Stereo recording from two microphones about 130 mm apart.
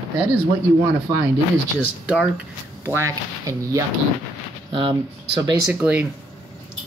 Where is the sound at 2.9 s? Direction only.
20° right (ahead or behind).